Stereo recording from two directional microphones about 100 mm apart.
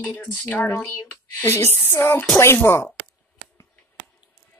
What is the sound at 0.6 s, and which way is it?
Speech, 25° left (ahead or behind).